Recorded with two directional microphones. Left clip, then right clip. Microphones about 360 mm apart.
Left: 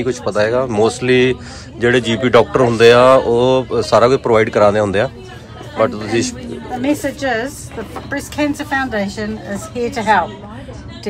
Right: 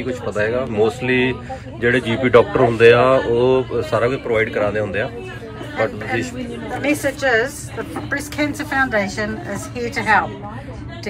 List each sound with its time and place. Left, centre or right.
0.0 s speech: centre
7.2 s a woman's voice: left